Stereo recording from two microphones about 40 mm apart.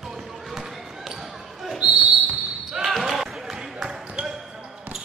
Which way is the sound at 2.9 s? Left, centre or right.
Centre.